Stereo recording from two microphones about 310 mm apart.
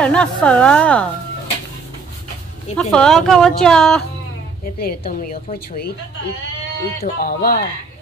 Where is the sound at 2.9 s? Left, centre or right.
Centre.